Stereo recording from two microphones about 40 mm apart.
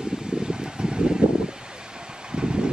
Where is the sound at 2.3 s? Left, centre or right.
Right.